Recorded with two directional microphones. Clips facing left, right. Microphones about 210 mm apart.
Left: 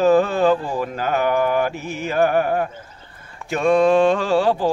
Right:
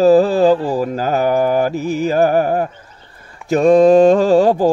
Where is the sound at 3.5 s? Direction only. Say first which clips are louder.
Right 6 dB; 40° right (ahead or behind).